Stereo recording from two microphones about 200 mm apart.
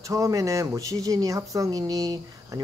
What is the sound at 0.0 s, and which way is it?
Speech, 15° right (ahead or behind).